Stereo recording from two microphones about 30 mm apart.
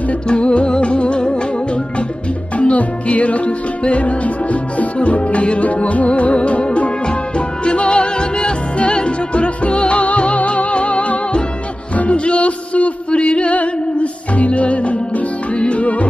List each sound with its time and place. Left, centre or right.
0.3 s music: left
2.5 s music: left
5.7 s music: left